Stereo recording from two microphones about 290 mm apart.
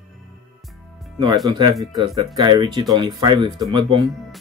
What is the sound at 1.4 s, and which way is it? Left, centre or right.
Speech, centre.